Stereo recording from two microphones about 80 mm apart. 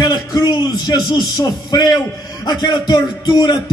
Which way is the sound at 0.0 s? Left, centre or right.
Left.